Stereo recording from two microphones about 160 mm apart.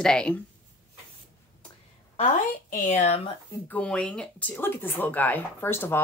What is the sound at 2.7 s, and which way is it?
Speech, 50° left (ahead or behind).